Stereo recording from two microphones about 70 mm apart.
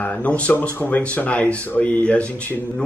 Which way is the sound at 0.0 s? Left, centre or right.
Centre.